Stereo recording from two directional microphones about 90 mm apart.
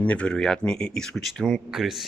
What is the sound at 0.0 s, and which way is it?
Speech, 15° left (ahead or behind).